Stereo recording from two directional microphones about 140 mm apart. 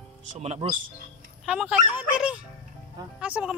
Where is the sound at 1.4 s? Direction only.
5° right (ahead or behind).